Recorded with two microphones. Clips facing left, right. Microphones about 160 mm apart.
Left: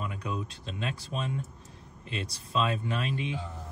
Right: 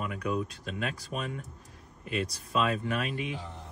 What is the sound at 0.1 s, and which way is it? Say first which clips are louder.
Speech: right 4 dB; 25° left (ahead or behind).